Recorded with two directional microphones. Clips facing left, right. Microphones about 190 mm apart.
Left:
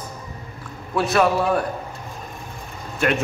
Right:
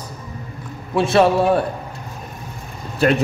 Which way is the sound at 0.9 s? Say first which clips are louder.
Right 4 dB; 25° right (ahead or behind).